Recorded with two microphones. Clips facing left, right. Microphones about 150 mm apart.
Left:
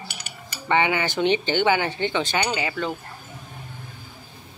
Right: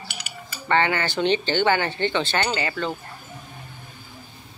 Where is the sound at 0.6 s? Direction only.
15° left (ahead or behind).